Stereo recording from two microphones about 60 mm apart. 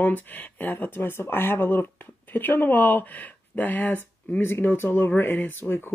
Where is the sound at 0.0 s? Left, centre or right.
Left.